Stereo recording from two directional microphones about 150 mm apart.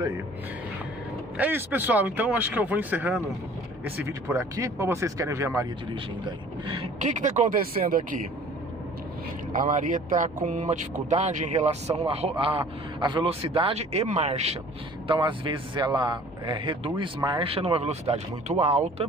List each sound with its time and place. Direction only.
1.3 s speech: 10° right (ahead or behind); by 6.9 s 35° right (ahead or behind)
7.0 s speech: 55° right (ahead or behind)
9.7 s a man's voice: 60° right (ahead or behind)
15.0 s a man's voice: 35° right (ahead or behind)